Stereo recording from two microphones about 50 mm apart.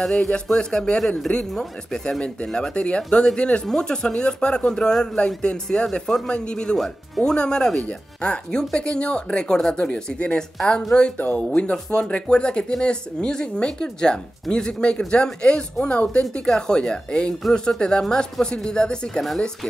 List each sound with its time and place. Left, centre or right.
0.1 s speech: centre
6.8 s speech: centre
7.3 s speech: centre